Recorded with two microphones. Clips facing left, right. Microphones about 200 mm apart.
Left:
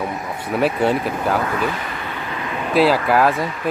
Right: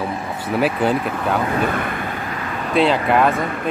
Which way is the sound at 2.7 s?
5° left (ahead or behind).